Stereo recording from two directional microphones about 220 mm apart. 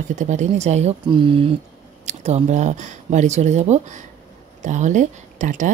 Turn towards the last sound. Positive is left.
turn(degrees=-35)  # may be behind; listen again after turning